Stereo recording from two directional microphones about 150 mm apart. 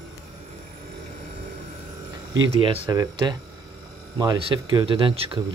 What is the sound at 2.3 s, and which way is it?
Speech, 25° right (ahead or behind).